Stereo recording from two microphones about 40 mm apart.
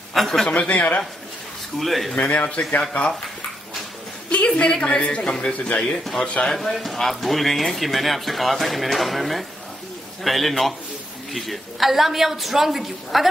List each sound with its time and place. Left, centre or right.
0.2 s speech: centre
0.5 s speech: left
1.8 s speech: centre
2.1 s speech: left
4.3 s a woman's voice: left
6.5 s speech: centre